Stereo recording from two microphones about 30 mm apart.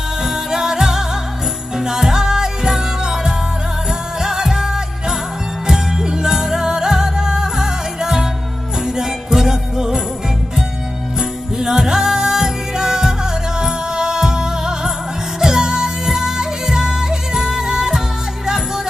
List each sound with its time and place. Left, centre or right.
0.2 s music: centre
11.1 s music: centre